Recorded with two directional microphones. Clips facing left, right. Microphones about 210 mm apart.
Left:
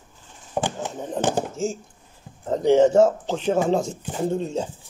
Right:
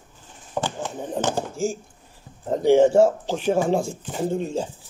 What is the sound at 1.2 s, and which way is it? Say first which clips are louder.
Speech: left 1 dB; 20° left (ahead or behind).